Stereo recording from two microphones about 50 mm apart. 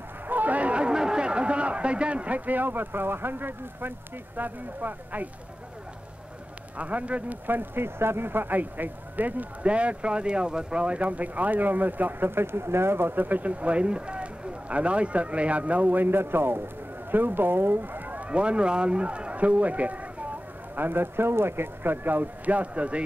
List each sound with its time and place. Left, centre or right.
0.3 s a sound: right
4.4 s speech: right
6.8 s speech: right
7.4 s speech: right
20.7 s speech: right